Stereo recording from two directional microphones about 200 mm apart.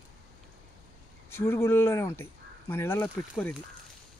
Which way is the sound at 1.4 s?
10° left (ahead or behind).